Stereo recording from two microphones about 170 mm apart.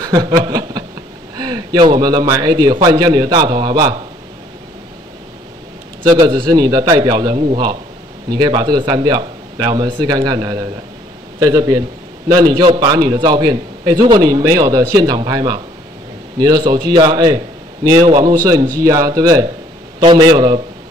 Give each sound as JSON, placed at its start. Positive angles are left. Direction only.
{"t": 0.0, "sound": "chuckle", "side_deg": -20}
{"t": 1.3, "sound": "a man's voice", "side_deg": -25}
{"t": 6.0, "sound": "a man's voice", "side_deg": -25}